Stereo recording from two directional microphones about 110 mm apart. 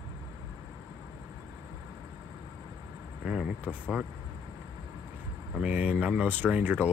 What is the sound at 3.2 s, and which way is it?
Vehicle, 10° right (ahead or behind).